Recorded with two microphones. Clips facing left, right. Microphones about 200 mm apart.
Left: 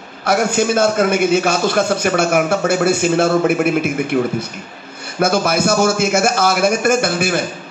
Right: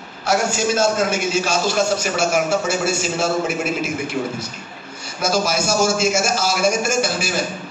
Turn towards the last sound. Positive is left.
turn(degrees=55)  # may be behind; listen again after turning